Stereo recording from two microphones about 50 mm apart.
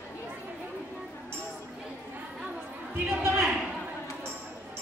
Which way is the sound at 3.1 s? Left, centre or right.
Right.